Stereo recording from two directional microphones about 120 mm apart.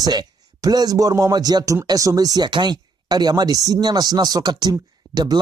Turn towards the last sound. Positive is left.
turn(degrees=-35)  # may be behind; listen again after turning